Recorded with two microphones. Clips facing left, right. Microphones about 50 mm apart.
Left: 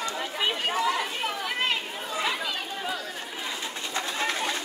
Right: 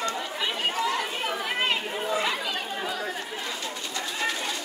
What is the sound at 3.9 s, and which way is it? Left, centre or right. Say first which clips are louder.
Bird: left 1 dB; left.